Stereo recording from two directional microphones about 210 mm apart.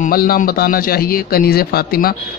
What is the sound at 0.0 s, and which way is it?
A man's voice, 45° left (ahead or behind).